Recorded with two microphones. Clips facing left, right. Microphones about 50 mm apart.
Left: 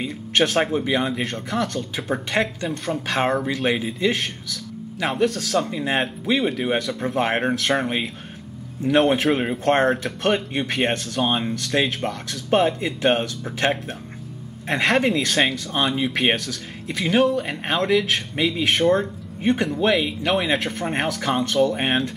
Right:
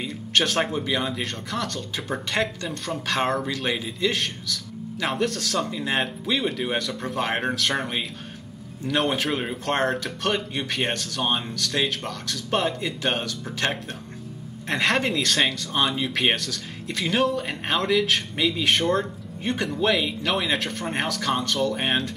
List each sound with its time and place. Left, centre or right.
0.0 s a man's voice: centre
14.7 s speech: centre